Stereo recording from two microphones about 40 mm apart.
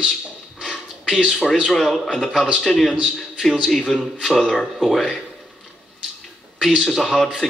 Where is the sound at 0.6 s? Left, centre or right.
Centre.